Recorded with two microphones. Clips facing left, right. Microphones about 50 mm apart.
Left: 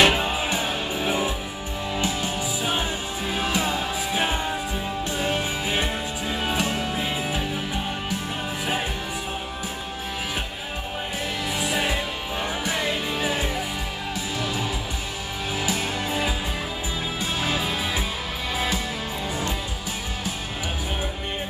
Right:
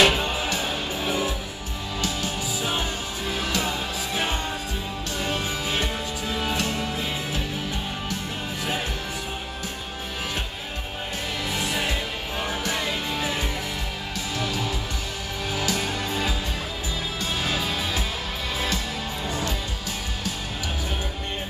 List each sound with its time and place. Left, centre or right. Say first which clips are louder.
0.0 s music: left 1 dB; centre
11.5 s music: left 2 dB; centre
17.4 s music: left 1 dB; centre